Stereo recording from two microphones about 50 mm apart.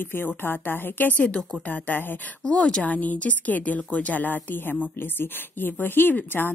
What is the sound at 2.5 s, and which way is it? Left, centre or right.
A woman's voice, left.